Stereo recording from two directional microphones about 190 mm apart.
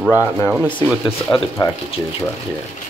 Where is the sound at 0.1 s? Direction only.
15° left (ahead or behind).